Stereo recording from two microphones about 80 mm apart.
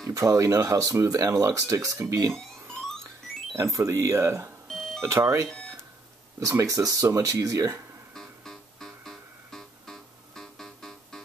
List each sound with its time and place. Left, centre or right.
0.1 s speech: right
3.5 s speech: right
4.6 s music: centre
5.0 s speech: right
5.5 s a sound: centre
6.4 s speech: right
8.1 s music: centre